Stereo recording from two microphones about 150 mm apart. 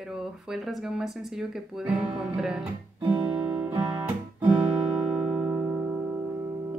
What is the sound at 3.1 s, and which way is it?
Guitar, 5° right (ahead or behind).